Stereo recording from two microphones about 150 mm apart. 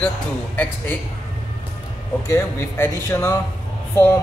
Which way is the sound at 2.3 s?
20° left (ahead or behind).